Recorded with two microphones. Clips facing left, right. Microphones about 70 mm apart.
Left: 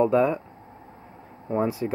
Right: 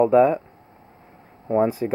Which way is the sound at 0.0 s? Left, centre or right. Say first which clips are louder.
Right 5 dB; centre.